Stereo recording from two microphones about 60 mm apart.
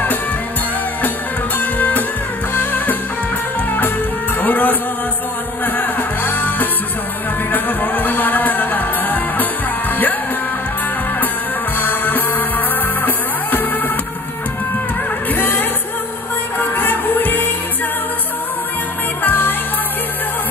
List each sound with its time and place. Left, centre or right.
1.6 s music: left
4.4 s music: left
11.8 s music: left
15.3 s music: left
19.2 s music: left